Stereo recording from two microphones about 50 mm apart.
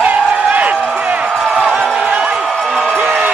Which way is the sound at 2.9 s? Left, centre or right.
Right.